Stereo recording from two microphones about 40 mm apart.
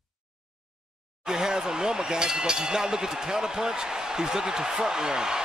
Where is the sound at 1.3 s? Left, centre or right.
Centre.